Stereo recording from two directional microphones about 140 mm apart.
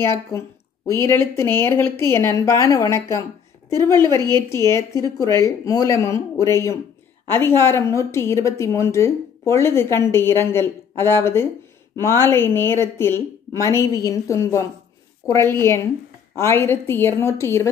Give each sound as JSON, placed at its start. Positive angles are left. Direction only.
{"t": 0.0, "sound": "speech", "side_deg": 20}
{"t": 4.3, "sound": "a woman's voice", "side_deg": 20}